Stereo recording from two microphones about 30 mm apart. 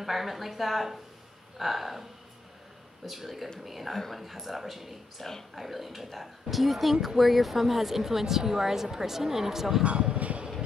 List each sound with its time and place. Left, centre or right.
0.0 s speech: centre
3.6 s speech: centre
9.8 s speech: right
10.1 s speech: right